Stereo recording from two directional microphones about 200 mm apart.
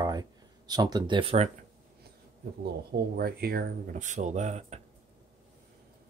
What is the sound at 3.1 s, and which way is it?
Speech, 50° right (ahead or behind).